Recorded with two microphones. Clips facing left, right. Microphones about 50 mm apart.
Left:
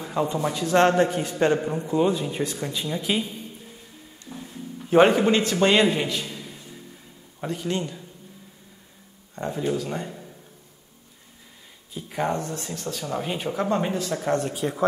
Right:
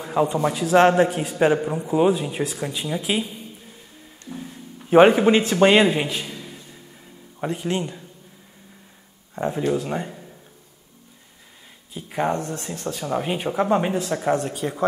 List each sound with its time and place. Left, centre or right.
0.0 s a man's voice: centre
4.3 s a sound: centre
7.3 s speech: right
9.7 s speech: right
11.9 s a man's voice: centre
14.3 s a man's voice: centre